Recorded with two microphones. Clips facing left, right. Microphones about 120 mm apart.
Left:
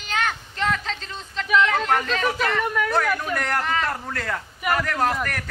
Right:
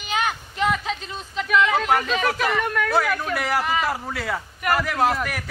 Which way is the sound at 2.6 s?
5° left (ahead or behind).